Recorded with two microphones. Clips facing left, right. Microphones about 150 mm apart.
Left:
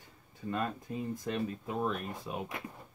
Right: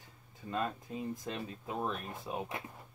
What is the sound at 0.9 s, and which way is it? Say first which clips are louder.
Speech: left 3 dB; 20° right (ahead or behind).